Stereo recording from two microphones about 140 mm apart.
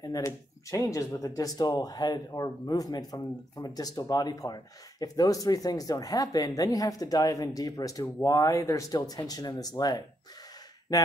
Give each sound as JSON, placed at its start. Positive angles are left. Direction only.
{"t": 0.0, "sound": "speech", "side_deg": 25}